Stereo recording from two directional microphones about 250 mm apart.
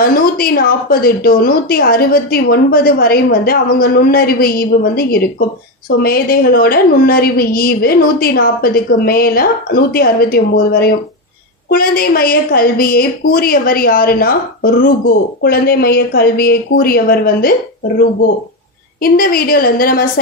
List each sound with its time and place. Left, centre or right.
0.0 s a woman's voice: left